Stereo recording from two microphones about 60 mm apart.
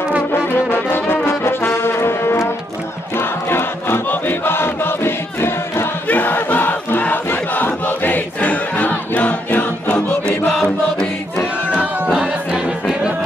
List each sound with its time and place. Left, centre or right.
0.3 s brass instrument: left
3.2 s music: left
6.0 s crowd: left
10.4 s music: centre
12.1 s music: centre